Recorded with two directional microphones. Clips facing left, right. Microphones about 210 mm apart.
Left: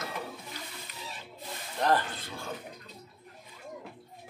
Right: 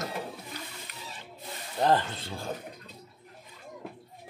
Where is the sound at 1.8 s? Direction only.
25° right (ahead or behind).